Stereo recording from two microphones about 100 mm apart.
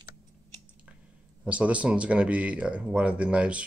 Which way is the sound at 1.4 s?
10° right (ahead or behind).